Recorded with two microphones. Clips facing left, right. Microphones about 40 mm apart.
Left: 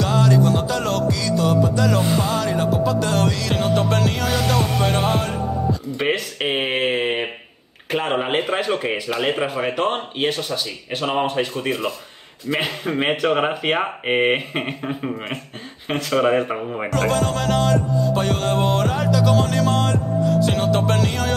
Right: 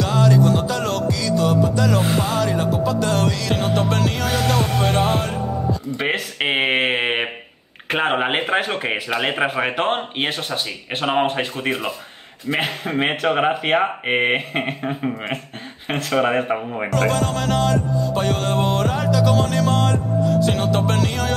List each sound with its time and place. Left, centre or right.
0.0 s music: centre
5.9 s speech: centre
6.4 s speech: right
16.9 s music: centre